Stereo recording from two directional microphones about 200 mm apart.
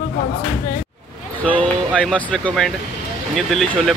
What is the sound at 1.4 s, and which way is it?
Speech, 5° left (ahead or behind).